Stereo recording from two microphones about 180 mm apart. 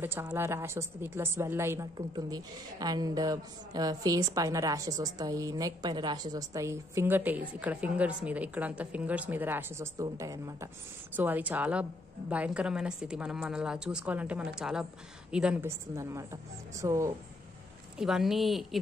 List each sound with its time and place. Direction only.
0.0 s a woman's voice: 15° right (ahead or behind)
15.9 s a woman's voice: 15° right (ahead or behind)
17.9 s a woman's voice: 5° right (ahead or behind)